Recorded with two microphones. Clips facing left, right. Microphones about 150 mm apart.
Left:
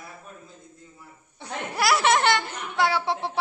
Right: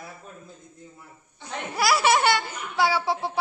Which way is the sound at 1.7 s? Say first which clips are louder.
Even; centre (ahead or behind).